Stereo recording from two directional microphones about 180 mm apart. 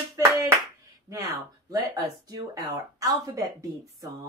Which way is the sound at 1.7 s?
20° right (ahead or behind).